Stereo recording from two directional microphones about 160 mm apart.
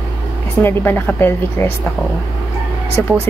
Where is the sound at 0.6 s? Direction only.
15° left (ahead or behind).